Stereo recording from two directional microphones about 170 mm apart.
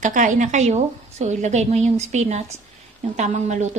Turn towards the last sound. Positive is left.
turn(degrees=-45)  # may be behind; listen again after turning